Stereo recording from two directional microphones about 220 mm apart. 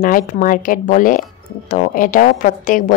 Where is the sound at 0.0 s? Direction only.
40° left (ahead or behind).